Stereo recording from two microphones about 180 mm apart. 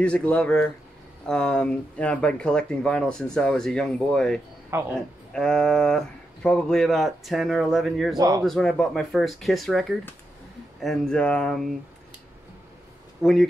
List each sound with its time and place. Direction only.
0.0 s speech: 5° left (ahead or behind)
4.6 s speech: 15° right (ahead or behind)
5.3 s speech: 5° left (ahead or behind)
8.2 s speech: 20° right (ahead or behind)
8.5 s speech: 5° left (ahead or behind)
13.2 s speech: centre (ahead or behind)